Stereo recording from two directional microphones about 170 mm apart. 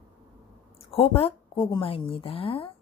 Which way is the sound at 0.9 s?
35° left (ahead or behind).